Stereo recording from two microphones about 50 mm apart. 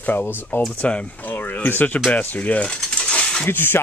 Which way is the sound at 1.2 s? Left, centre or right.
Left.